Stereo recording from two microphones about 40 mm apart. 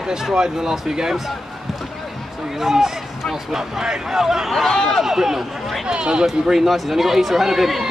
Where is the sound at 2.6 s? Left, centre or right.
Centre.